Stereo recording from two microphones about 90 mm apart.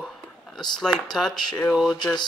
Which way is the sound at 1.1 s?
5° left (ahead or behind).